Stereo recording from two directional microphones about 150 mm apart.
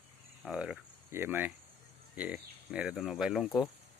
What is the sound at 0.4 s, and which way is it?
Speech, 5° right (ahead or behind).